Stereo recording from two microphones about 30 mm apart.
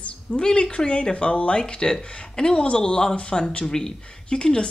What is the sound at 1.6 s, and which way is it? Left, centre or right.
Speech, left.